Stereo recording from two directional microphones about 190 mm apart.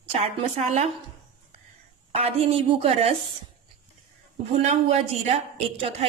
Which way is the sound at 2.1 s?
30° right (ahead or behind).